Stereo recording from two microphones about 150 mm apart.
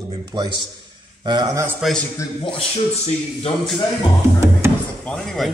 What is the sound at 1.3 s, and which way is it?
Speech, 25° right (ahead or behind).